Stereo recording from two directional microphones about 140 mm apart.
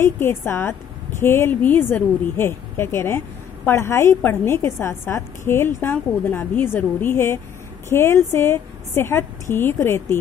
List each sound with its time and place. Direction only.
0.0 s a woman's voice: 15° left (ahead or behind)